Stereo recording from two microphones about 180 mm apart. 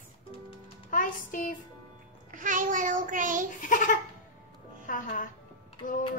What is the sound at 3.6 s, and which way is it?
Speech, 45° left (ahead or behind).